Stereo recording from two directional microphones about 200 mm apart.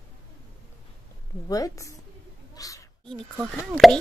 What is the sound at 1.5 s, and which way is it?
Speech, 15° left (ahead or behind).